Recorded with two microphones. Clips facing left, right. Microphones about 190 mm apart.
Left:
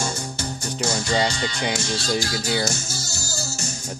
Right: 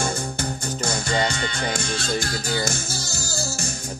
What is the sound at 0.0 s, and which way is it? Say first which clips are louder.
Music: right 2 dB; 55° right (ahead or behind).